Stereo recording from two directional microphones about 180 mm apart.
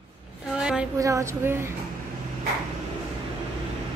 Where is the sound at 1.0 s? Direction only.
15° right (ahead or behind).